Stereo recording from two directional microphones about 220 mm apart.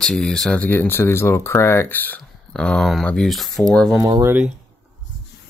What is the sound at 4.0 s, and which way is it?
Speech, 15° right (ahead or behind).